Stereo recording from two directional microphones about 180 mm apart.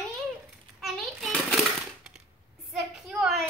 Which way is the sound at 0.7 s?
Centre (ahead or behind).